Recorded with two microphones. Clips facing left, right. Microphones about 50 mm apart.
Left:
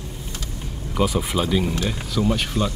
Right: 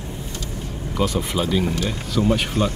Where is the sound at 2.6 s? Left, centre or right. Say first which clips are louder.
Right 2 dB; right.